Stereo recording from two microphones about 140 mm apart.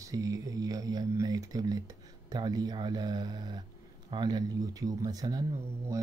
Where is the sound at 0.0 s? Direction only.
25° right (ahead or behind).